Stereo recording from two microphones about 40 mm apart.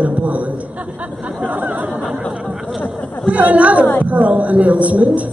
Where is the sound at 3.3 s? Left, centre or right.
Right.